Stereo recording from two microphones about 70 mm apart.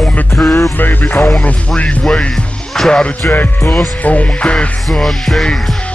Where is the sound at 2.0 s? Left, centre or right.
Centre.